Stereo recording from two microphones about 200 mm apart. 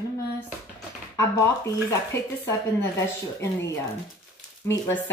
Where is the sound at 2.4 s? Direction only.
15° left (ahead or behind).